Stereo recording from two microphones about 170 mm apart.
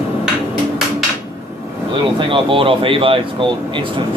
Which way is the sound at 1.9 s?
30° right (ahead or behind).